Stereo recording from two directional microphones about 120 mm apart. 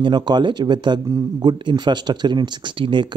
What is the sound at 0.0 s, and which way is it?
Speech, 40° right (ahead or behind).